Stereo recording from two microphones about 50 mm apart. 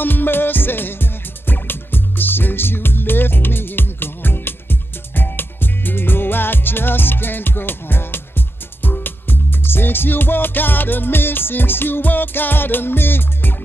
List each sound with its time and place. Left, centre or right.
0.0 s music: left